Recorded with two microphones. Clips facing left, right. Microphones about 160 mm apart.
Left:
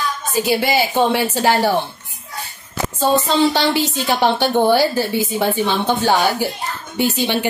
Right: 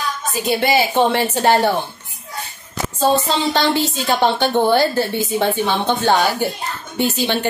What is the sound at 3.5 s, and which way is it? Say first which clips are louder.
A woman's voice: even; 10° left (ahead or behind).